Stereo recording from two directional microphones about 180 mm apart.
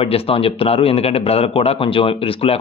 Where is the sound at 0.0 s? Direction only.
30° left (ahead or behind).